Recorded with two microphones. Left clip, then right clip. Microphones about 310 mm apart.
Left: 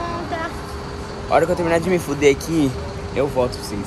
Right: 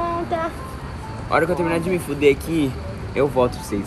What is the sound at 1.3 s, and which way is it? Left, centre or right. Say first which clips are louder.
Speech: left 3 dB; centre.